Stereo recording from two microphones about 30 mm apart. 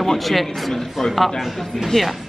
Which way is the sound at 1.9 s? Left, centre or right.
Left.